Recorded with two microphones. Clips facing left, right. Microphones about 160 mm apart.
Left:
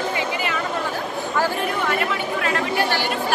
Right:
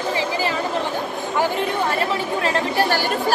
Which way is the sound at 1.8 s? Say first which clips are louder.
Right 1 dB; 30° right (ahead or behind).